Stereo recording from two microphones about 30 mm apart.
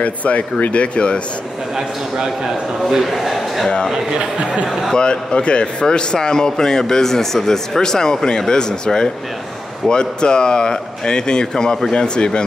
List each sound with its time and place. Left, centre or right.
0.0 s speech: left
0.9 s speech: left
3.0 s a man's voice: centre
4.9 s a man's voice: left